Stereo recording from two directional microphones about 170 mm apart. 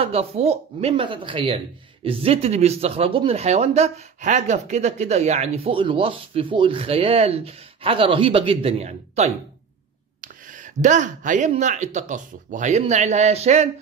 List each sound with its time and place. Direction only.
0.0 s speech: 35° right (ahead or behind)
10.2 s speech: 50° right (ahead or behind)